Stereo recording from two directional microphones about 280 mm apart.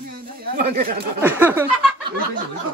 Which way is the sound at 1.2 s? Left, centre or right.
Centre.